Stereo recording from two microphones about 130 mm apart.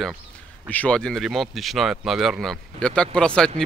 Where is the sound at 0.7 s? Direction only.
10° left (ahead or behind).